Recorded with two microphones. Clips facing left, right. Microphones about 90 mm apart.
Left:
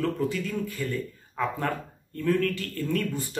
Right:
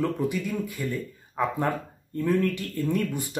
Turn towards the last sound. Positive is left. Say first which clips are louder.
# right 2 dB
turn(degrees=-15)  # may be behind; listen again after turning